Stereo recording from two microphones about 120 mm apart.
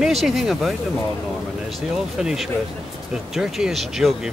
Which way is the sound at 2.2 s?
5° right (ahead or behind).